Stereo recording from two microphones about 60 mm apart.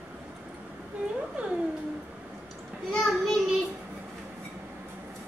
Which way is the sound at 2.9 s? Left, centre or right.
Centre.